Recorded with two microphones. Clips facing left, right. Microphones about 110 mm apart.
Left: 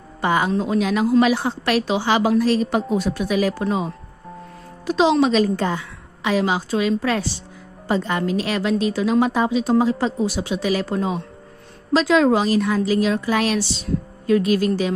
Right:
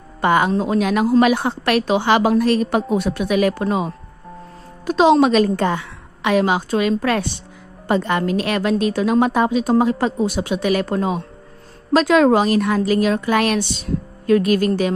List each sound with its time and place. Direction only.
0.2 s a woman's voice: 60° right (ahead or behind)
0.5 s a woman's voice: 50° right (ahead or behind)
4.8 s a woman's voice: 50° right (ahead or behind)